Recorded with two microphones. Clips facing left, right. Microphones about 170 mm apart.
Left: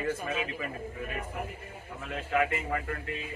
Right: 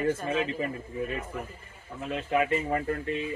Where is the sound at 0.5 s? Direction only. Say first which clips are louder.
Right 5 dB; 30° right (ahead or behind).